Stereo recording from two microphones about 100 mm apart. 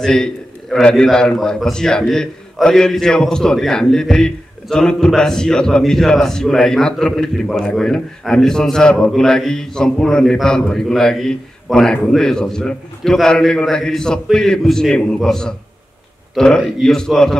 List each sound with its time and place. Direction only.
0.0 s a man's voice: 5° left (ahead or behind)